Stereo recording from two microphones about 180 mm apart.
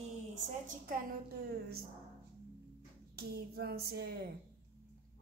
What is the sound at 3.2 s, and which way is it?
A woman's voice, 60° right (ahead or behind).